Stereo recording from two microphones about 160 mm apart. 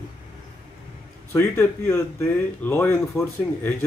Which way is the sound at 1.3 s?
15° left (ahead or behind).